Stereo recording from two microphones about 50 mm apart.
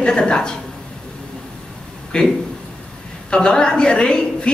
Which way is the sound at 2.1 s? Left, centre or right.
Centre.